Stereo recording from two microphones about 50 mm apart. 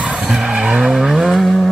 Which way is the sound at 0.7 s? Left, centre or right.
Right.